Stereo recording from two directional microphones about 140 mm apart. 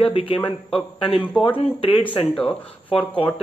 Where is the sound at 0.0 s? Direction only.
40° left (ahead or behind).